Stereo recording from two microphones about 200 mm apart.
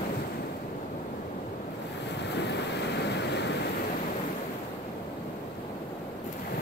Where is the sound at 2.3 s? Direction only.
60° left (ahead or behind).